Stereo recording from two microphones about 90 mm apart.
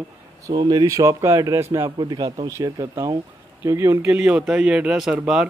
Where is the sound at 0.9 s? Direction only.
35° right (ahead or behind).